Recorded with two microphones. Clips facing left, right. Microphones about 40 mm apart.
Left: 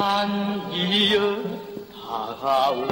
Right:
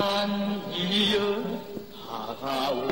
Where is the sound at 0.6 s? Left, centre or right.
Left.